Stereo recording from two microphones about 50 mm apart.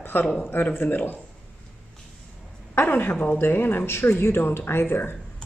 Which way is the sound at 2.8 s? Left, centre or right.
Left.